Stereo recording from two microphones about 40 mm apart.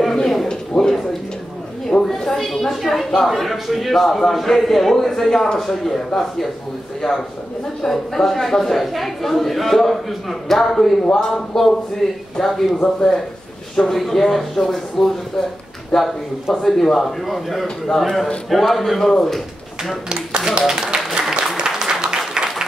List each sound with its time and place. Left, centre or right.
0.5 s a sound: centre
2.1 s a man's voice: centre
12.8 s a man's voice: centre
20.1 s speech: right
21.1 s applause: centre